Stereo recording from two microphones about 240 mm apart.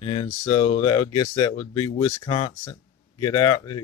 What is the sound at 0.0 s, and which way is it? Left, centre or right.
Speech, centre.